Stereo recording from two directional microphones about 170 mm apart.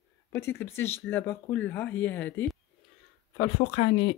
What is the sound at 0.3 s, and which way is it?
Speech, 15° left (ahead or behind).